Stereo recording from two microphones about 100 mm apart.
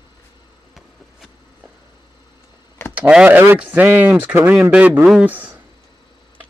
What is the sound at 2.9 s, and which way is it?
Speech, 15° right (ahead or behind).